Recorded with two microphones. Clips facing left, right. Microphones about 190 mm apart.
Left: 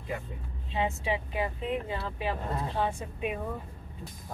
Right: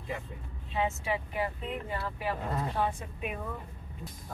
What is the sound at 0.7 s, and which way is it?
Speech, 20° left (ahead or behind).